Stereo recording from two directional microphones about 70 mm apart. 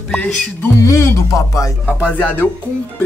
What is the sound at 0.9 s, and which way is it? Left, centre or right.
Speech, left.